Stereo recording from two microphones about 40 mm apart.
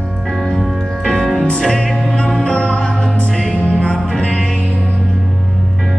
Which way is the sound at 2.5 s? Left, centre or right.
Left.